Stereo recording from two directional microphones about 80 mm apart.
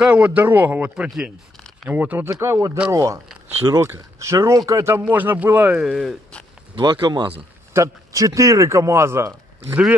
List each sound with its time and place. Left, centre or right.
0.0 s speech: centre
1.9 s speech: right
2.2 s speech: right
5.0 s speech: right
5.8 s speech: centre
6.7 s speech: right
7.7 s speech: right